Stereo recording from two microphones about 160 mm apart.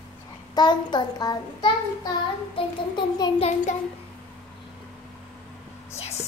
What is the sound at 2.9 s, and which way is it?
Speech, 25° left (ahead or behind).